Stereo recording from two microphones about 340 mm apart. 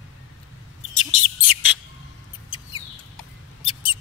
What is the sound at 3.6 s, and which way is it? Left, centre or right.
Mouse, centre.